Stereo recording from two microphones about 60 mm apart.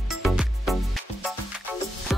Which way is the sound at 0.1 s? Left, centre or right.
Centre.